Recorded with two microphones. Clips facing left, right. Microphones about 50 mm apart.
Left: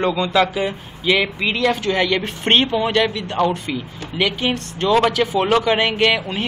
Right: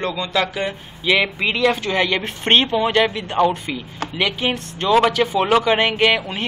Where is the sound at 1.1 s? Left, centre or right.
Centre.